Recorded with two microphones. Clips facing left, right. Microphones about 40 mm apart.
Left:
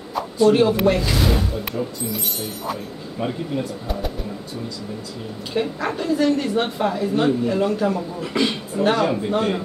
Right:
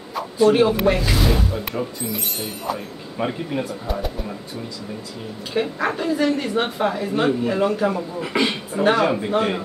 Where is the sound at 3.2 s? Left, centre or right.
Right.